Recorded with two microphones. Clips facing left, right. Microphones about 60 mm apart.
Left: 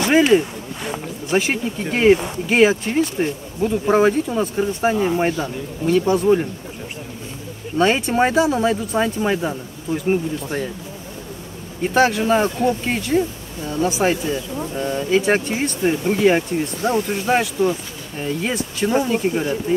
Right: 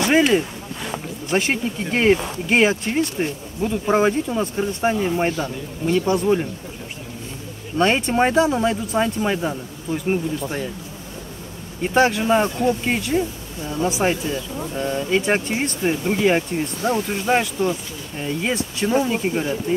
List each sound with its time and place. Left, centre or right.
0.0 s speech: centre
7.7 s speech: centre
11.8 s speech: centre